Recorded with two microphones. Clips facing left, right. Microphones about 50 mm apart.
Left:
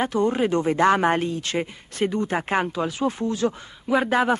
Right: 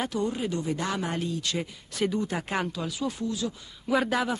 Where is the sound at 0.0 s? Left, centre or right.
Left.